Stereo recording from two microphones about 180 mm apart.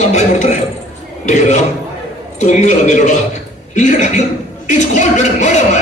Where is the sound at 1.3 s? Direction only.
40° left (ahead or behind).